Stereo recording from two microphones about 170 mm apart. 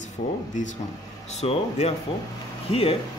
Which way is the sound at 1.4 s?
40° left (ahead or behind).